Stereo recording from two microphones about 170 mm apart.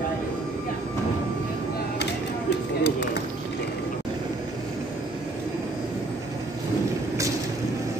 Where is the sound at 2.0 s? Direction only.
90° left.